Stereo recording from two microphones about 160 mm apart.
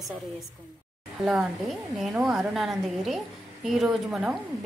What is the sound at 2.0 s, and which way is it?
A woman's voice, 5° right (ahead or behind).